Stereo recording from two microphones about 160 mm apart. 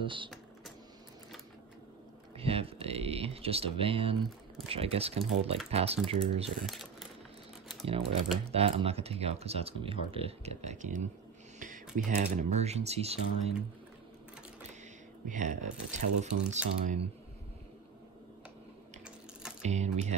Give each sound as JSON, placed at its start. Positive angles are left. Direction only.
{"t": 0.0, "sound": "speech", "side_deg": -30}
{"t": 2.3, "sound": "speech", "side_deg": -35}
{"t": 6.6, "sound": "a sound", "side_deg": 0}
{"t": 8.5, "sound": "speech", "side_deg": -35}
{"t": 15.2, "sound": "speech", "side_deg": -50}
{"t": 19.6, "sound": "speech", "side_deg": -45}